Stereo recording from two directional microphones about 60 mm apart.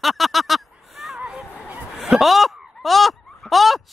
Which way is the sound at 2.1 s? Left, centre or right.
Centre.